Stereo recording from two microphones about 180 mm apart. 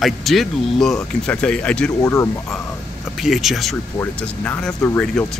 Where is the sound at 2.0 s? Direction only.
15° left (ahead or behind).